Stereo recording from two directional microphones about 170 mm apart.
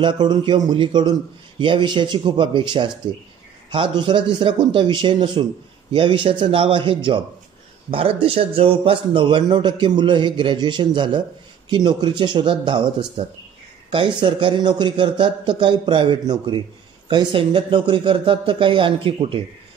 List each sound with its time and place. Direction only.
0.0 s a man's voice: 25° right (ahead or behind)
13.8 s a man's voice: 30° right (ahead or behind)